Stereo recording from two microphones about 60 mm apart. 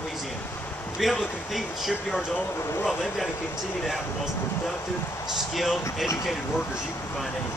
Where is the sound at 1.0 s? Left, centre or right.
Centre.